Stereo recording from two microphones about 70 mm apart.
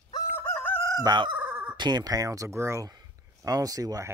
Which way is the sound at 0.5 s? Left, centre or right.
Left.